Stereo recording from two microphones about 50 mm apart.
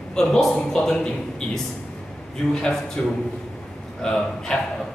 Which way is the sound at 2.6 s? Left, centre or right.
Centre.